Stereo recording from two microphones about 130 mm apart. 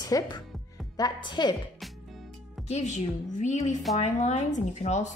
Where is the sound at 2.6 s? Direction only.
60° left (ahead or behind).